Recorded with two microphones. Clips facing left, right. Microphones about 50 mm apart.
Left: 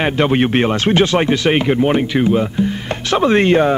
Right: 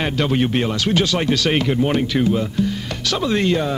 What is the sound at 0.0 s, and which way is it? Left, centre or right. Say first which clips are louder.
Speech: left 5 dB; left.